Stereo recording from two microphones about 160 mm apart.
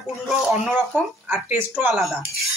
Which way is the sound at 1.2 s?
10° right (ahead or behind).